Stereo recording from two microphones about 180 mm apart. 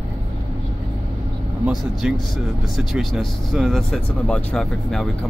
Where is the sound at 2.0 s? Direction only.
5° right (ahead or behind).